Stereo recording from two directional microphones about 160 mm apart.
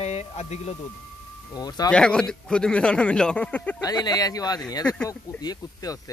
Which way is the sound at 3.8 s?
25° left (ahead or behind).